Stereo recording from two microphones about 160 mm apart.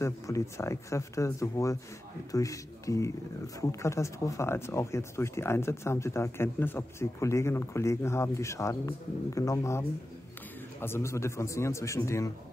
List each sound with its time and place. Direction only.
0.0 s speech: 20° left (ahead or behind)